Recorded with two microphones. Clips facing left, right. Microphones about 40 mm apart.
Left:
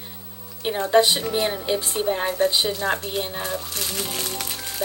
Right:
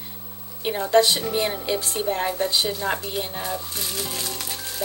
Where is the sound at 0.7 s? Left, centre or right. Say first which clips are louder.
Left 1 dB; left.